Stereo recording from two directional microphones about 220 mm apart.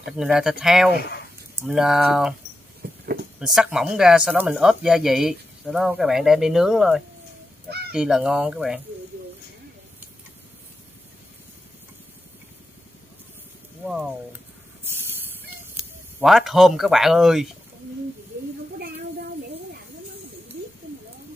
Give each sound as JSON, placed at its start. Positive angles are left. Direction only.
{"t": 0.0, "sound": "speech", "side_deg": -5}
{"t": 0.9, "sound": "speech", "side_deg": 45}
{"t": 1.6, "sound": "speech", "side_deg": 0}
{"t": 2.8, "sound": "a sound", "side_deg": -45}
{"t": 3.3, "sound": "speech", "side_deg": 0}
{"t": 15.7, "sound": "speech", "side_deg": 0}